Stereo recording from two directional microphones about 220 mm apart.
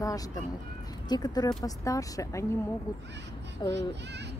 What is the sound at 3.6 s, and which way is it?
Speech, 20° left (ahead or behind).